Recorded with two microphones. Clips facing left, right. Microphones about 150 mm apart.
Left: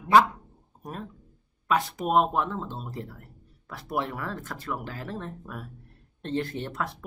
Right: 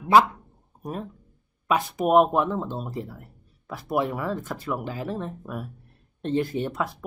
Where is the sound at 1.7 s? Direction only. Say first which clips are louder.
Right 4 dB; 15° right (ahead or behind).